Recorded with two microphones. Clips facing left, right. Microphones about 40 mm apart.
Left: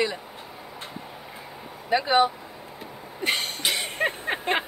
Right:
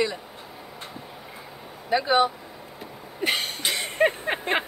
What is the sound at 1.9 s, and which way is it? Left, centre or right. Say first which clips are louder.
Speech: even; left.